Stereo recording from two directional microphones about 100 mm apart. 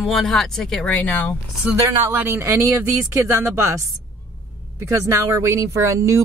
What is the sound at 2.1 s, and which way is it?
Speech, 25° right (ahead or behind).